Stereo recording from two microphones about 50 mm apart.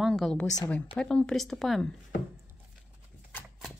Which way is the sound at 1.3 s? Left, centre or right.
Centre.